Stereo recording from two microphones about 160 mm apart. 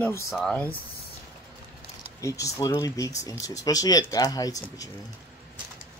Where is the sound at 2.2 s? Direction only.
20° left (ahead or behind).